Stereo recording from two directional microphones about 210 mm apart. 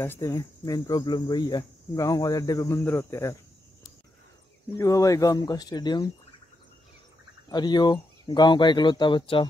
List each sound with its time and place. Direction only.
0.0 s speech: 15° left (ahead or behind)
4.7 s speech: 15° left (ahead or behind)
7.4 s speech: 20° left (ahead or behind)